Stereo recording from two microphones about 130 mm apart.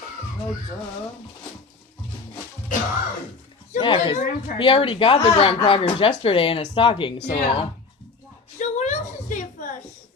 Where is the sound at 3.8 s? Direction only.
40° left (ahead or behind).